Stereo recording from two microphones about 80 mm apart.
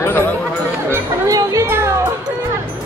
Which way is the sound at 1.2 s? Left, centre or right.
Right.